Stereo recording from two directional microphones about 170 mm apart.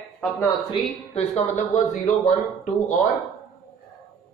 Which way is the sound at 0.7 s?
40° left (ahead or behind).